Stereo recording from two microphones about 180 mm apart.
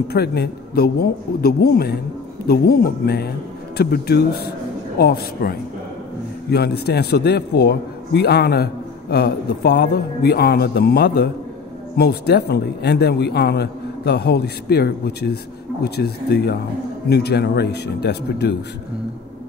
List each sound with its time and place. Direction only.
0.1 s a man's voice: 60° left (ahead or behind)